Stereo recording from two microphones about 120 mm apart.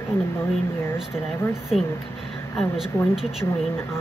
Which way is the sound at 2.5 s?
5° right (ahead or behind).